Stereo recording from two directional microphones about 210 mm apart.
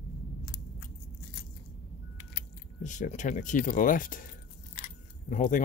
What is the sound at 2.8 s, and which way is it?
Speech, 35° left (ahead or behind).